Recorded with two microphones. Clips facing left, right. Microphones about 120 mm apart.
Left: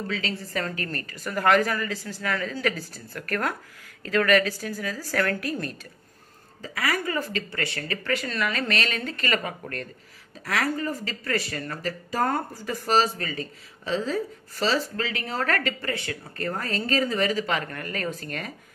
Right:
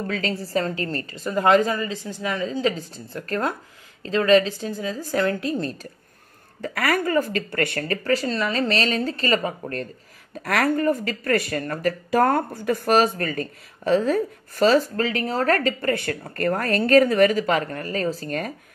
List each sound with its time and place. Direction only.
0.0 s a woman's voice: 40° right (ahead or behind); by 5.8 s 25° right (ahead or behind)
6.6 s speech: 55° right (ahead or behind); by 9.8 s 30° right (ahead or behind)
10.4 s speech: 55° right (ahead or behind); by 18.5 s 35° right (ahead or behind)